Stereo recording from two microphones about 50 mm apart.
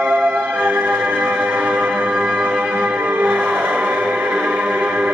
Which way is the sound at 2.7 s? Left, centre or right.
Right.